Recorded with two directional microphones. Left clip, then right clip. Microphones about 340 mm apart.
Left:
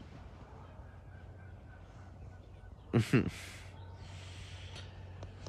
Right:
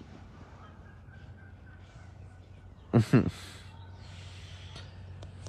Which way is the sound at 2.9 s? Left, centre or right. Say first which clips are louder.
Right 5 dB; centre.